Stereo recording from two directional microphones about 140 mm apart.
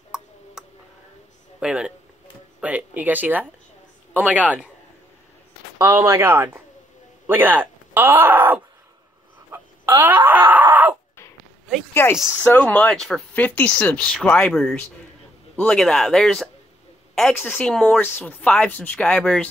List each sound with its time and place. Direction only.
0.1 s tick-tock: 5° right (ahead or behind)
0.6 s tick: 5° right (ahead or behind)
1.6 s speech: 5° right (ahead or behind)
5.8 s speech: 20° right (ahead or behind)
9.5 s chicken: 15° right (ahead or behind)
11.9 s speech: 15° left (ahead or behind)